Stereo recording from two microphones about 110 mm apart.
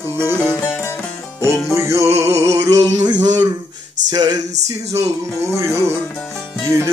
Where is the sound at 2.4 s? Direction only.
30° right (ahead or behind).